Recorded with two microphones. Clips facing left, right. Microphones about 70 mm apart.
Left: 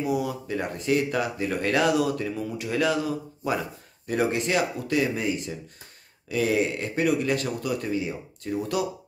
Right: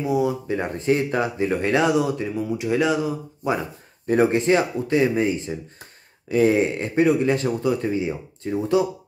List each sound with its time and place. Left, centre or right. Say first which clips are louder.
0.0 s speech: right 5 dB; right
4.1 s speech: right 7 dB; right